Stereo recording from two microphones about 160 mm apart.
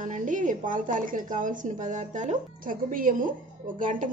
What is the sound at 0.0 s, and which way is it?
A woman's voice, 55° right (ahead or behind).